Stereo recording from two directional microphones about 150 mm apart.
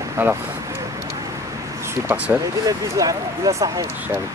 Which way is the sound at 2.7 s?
25° right (ahead or behind).